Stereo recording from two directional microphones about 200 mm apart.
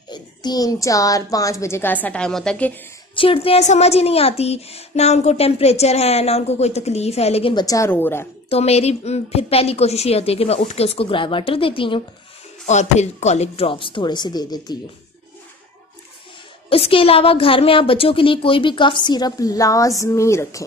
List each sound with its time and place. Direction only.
0.1 s a child's voice: 20° left (ahead or behind); by 2.7 s 5° left (ahead or behind)
3.2 s speech: 30° left (ahead or behind); by 8.3 s 10° left (ahead or behind)
8.5 s a woman's voice: 30° left (ahead or behind)
16.6 s a woman's voice: 25° left (ahead or behind)